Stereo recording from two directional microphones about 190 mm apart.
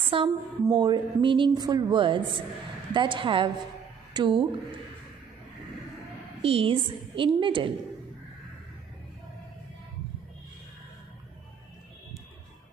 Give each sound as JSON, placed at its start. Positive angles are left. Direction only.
{"t": 0.1, "sound": "speech", "side_deg": -25}
{"t": 6.4, "sound": "speech", "side_deg": -30}